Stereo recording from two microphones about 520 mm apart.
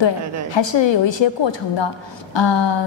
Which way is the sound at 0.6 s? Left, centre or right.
Left.